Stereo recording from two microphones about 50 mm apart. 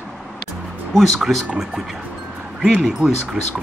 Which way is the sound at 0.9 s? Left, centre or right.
Centre.